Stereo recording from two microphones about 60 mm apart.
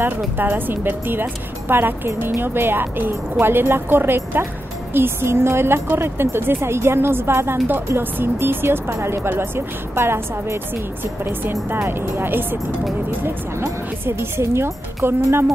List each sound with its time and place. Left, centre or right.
0.4 s a woman's voice: right
11.7 s a woman's voice: right